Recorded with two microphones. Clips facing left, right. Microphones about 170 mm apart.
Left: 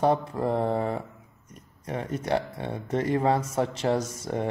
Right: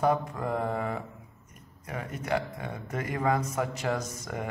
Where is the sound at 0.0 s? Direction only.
30° left (ahead or behind).